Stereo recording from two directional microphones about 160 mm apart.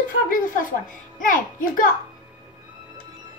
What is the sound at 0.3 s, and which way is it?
A woman's voice, 60° left (ahead or behind).